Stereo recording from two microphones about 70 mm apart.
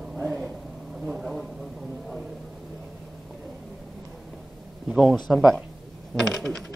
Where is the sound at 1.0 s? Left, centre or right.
Centre.